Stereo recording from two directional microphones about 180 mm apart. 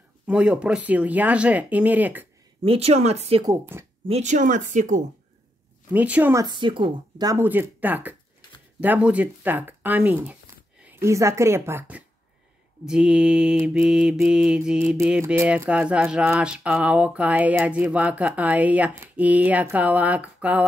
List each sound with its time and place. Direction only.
0.3 s speech: 5° right (ahead or behind)
2.6 s speech: 30° right (ahead or behind)
3.4 s speech: 15° right (ahead or behind)
4.1 s speech: 40° right (ahead or behind)
5.9 s speech: 10° right (ahead or behind)
6.4 s speech: 25° right (ahead or behind)
12.8 s mantra: 5° right (ahead or behind)
15.0 s speech: 10° right (ahead or behind)